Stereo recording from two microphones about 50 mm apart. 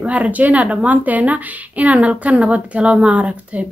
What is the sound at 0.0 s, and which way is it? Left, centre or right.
Speech, right.